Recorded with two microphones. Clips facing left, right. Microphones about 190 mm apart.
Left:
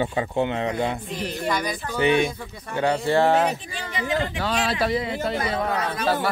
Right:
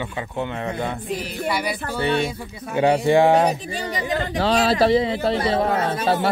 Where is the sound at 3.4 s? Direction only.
40° right (ahead or behind).